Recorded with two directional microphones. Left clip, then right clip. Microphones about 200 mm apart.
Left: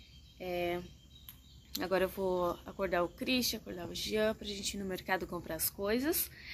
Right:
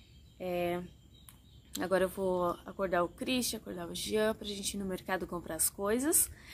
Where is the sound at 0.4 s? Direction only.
15° right (ahead or behind).